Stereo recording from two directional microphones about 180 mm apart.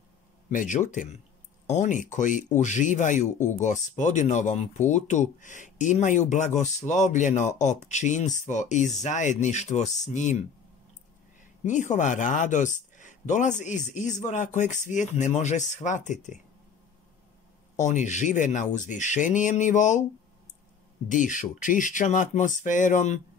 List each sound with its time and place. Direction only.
0.5 s speech: 45° left (ahead or behind)
11.6 s speech: 45° left (ahead or behind)
17.7 s speech: 45° left (ahead or behind)
21.1 s speech: 45° left (ahead or behind)